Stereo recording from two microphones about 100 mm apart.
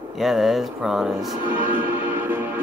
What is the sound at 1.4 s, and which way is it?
Music, 20° right (ahead or behind).